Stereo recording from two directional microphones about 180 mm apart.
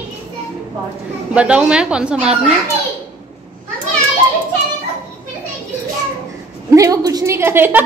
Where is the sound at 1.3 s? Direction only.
5° right (ahead or behind).